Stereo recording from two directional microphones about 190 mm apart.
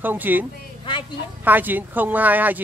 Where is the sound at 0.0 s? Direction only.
10° right (ahead or behind).